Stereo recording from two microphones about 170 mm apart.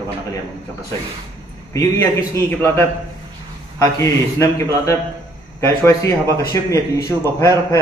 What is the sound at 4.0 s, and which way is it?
A man's voice, 20° left (ahead or behind).